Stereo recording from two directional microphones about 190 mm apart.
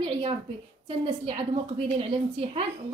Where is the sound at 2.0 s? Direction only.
30° right (ahead or behind).